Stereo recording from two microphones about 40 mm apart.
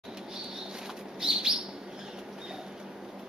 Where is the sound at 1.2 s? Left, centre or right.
Centre.